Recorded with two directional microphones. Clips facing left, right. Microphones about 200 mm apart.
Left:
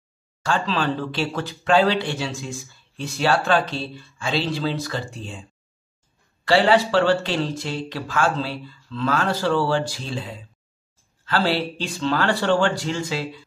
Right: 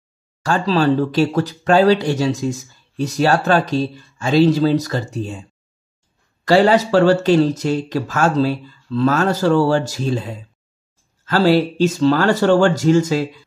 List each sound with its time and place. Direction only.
0.4 s speech: 40° right (ahead or behind)
6.4 s speech: 40° right (ahead or behind)